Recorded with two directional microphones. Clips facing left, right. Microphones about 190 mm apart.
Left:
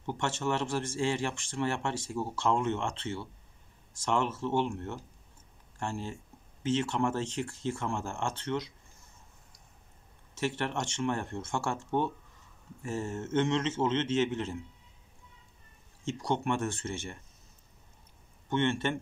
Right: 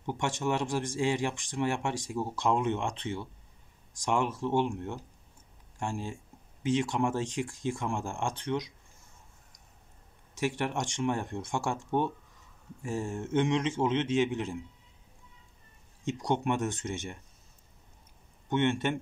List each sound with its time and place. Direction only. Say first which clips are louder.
0.0 s speech: right 1 dB; 15° right (ahead or behind)
10.3 s speech: right 1 dB; 15° right (ahead or behind)
16.0 s speech: right 2 dB; 15° right (ahead or behind)
18.5 s speech: right 1 dB; 15° right (ahead or behind)